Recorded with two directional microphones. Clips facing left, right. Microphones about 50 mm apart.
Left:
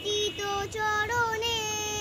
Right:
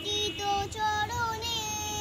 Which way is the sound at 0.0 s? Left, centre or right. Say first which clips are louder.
Left 2 dB; left.